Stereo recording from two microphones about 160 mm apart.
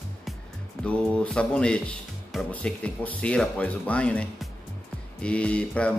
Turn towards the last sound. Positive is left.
turn(degrees=5)  # may be behind; listen again after turning